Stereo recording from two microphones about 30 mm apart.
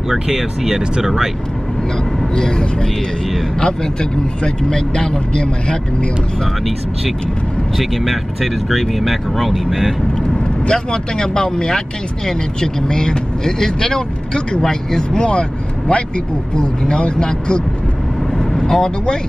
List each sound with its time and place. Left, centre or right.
0.1 s speech: centre
2.3 s speech: centre
5.3 s a man's voice: left
7.7 s speech: centre
10.7 s speech: left
15.9 s speech: left
16.5 s speech: left
18.4 s vehicle: centre